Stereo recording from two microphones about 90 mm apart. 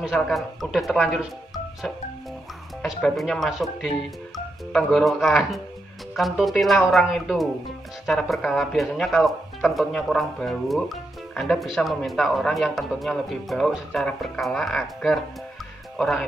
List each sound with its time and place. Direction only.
0.0 s speech: centre (ahead or behind)
2.8 s speech: centre (ahead or behind)